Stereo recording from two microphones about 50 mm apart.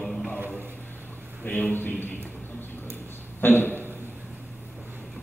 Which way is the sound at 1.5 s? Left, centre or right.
Left.